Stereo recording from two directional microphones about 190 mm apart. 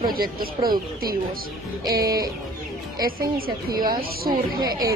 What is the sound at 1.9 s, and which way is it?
Music, 20° right (ahead or behind).